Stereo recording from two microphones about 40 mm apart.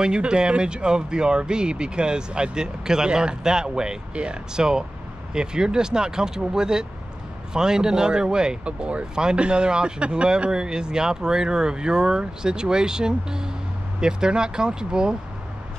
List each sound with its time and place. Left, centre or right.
0.0 s speech: right